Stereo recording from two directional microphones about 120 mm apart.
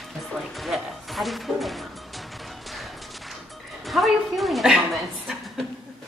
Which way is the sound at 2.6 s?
Centre (ahead or behind).